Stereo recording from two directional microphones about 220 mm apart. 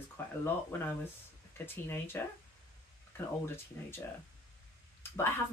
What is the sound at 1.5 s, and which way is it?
Speech, 10° left (ahead or behind).